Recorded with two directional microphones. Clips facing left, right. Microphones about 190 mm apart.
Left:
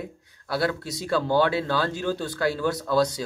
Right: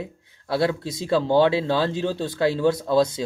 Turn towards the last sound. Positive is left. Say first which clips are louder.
# right 3 dB
turn(degrees=-25)  # may be behind; listen again after turning